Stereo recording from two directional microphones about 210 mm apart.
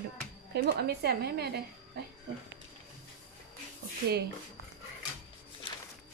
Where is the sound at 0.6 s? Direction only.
50° right (ahead or behind).